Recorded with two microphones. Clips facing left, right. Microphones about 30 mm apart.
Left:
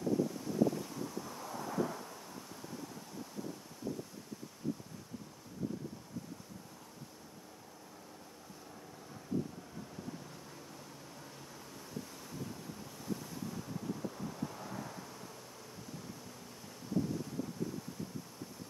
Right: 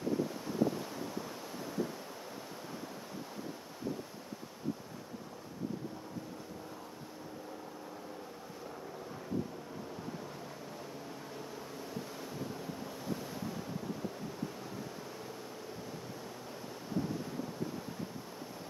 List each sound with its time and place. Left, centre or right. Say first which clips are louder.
0.5 s waves: even; right
11.7 s vehicle: right 1 dB; centre
14.4 s pink noise: even; centre